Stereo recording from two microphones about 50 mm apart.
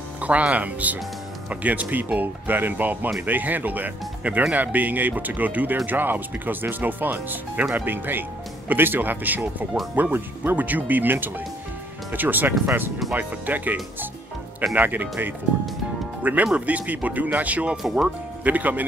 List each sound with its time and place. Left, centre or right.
0.2 s speech: right
14.8 s speech: right